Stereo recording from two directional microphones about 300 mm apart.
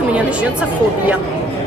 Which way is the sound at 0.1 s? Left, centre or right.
Centre.